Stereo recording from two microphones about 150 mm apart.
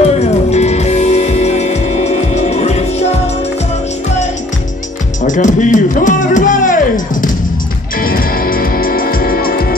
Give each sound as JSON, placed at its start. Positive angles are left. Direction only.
{"t": 0.2, "sound": "music", "side_deg": 45}
{"t": 5.2, "sound": "speech", "side_deg": 55}
{"t": 8.0, "sound": "music", "side_deg": 75}